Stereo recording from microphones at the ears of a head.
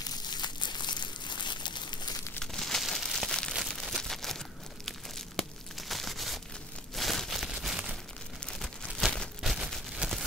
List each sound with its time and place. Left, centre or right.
0.6 s crumpling: left
2.4 s crumpling: centre
5.9 s crumpling: centre
7.0 s a sound: centre